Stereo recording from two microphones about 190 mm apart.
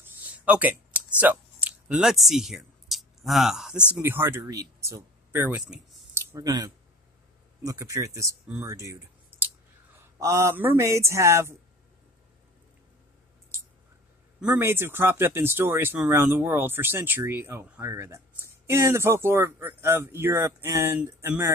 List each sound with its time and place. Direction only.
0.5 s a sound: 5° right (ahead or behind)
3.9 s speech: 10° right (ahead or behind)
9.9 s speech: 15° right (ahead or behind)
14.4 s speech: 10° right (ahead or behind)